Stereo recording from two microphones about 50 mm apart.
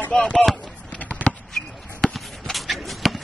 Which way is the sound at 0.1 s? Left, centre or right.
Centre.